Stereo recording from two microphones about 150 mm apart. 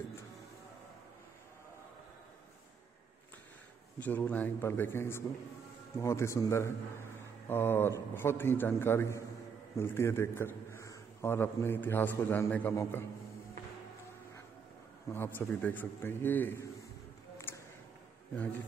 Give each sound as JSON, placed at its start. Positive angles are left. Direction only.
{"t": 4.0, "sound": "a man's voice", "side_deg": 10}
{"t": 15.1, "sound": "a man's voice", "side_deg": 15}
{"t": 17.5, "sound": "a sound", "side_deg": 15}